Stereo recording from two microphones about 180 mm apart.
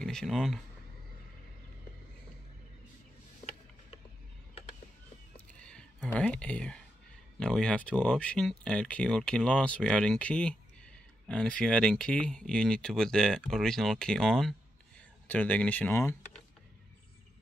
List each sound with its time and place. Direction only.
0.0 s speech: 5° left (ahead or behind)
5.6 s a sound: 5° left (ahead or behind)
7.3 s speech: 5° left (ahead or behind)